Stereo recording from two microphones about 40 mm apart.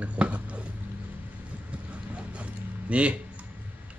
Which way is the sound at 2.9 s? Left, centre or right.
Right.